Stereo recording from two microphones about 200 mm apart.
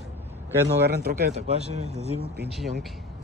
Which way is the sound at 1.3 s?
35° right (ahead or behind).